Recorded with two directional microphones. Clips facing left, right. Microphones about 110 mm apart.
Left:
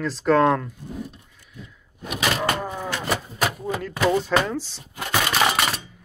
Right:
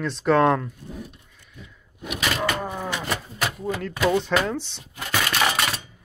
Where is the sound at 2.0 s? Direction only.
Centre (ahead or behind).